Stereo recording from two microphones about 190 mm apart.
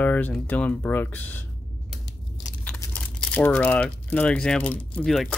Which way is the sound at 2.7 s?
15° left (ahead or behind).